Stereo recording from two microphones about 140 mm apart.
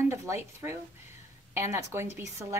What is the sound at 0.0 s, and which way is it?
A woman's voice, 20° right (ahead or behind).